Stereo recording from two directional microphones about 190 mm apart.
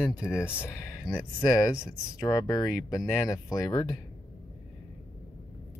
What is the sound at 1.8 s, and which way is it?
Speech, 20° left (ahead or behind).